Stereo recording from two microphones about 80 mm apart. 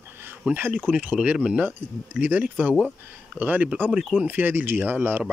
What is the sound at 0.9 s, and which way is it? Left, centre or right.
Speech, centre.